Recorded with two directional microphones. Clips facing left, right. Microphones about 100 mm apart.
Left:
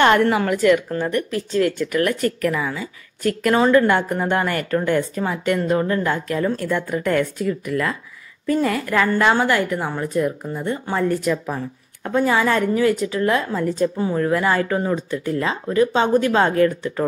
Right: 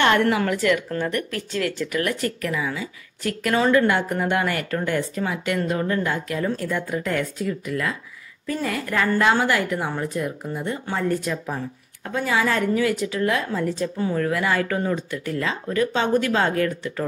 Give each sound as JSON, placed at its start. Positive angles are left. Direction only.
{"t": 0.0, "sound": "a woman's voice", "side_deg": 35}
{"t": 1.0, "sound": "speech", "side_deg": 25}
{"t": 2.0, "sound": "a woman's voice", "side_deg": 45}
{"t": 3.5, "sound": "a woman's voice", "side_deg": 35}
{"t": 8.5, "sound": "a woman's voice", "side_deg": 50}
{"t": 13.9, "sound": "a woman's voice", "side_deg": 30}